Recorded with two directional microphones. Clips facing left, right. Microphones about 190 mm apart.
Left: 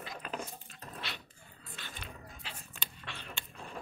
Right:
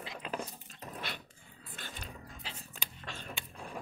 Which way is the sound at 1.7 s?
45° right (ahead or behind).